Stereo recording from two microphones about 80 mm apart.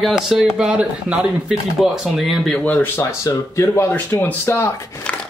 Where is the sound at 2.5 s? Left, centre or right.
Centre.